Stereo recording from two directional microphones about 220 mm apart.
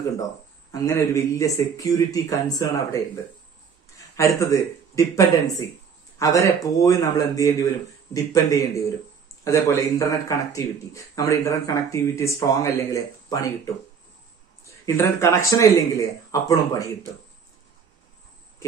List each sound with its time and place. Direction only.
0.7 s speech: 15° left (ahead or behind)
4.2 s speech: 15° left (ahead or behind)
14.9 s speech: 10° left (ahead or behind)